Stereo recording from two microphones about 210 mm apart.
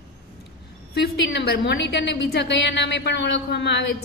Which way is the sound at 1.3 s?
50° left (ahead or behind).